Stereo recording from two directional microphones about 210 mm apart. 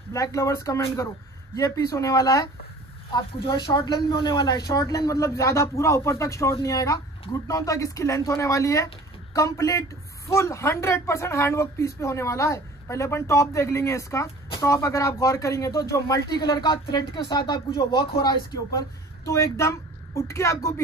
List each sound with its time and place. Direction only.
0.1 s speech: 15° left (ahead or behind)